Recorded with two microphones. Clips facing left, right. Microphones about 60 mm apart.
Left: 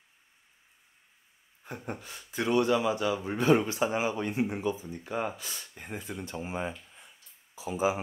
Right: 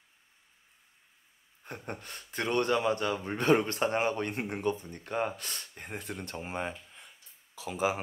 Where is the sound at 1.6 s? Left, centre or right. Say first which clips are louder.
Left 2 dB; right.